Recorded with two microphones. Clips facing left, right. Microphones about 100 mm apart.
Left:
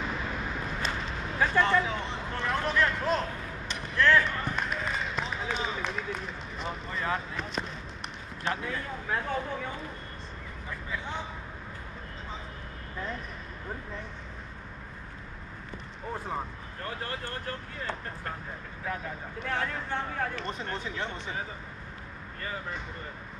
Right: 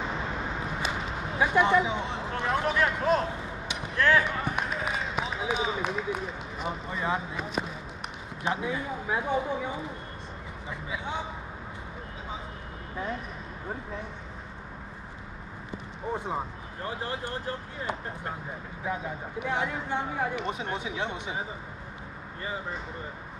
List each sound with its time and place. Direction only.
0.0 s a sound: 25° right (ahead or behind)
0.8 s speech: 10° right (ahead or behind)
16.1 s speech: 15° right (ahead or behind)